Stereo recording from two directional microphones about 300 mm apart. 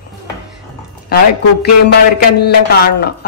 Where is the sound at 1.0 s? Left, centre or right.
Left.